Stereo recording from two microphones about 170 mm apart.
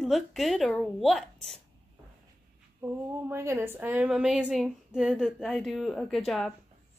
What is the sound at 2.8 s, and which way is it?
A woman's voice, 15° right (ahead or behind).